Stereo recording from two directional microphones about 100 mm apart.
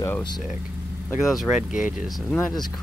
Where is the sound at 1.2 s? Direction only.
5° right (ahead or behind).